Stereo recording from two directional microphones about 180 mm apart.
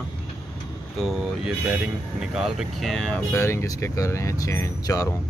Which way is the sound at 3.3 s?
15° left (ahead or behind).